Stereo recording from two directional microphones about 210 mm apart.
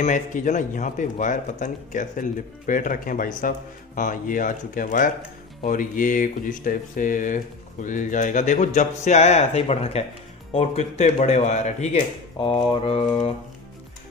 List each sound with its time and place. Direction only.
0.0 s speech: 35° left (ahead or behind)
12.4 s mantra: 25° left (ahead or behind)